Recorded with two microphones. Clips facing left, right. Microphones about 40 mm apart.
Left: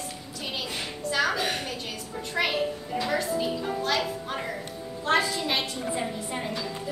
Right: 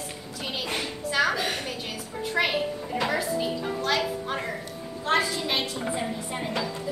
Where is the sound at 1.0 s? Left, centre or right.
Centre.